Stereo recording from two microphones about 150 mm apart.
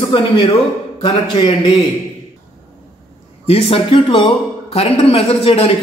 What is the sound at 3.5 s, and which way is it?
Speech, 40° left (ahead or behind).